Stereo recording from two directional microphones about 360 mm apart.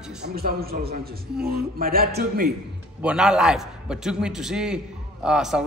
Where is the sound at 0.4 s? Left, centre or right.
Right.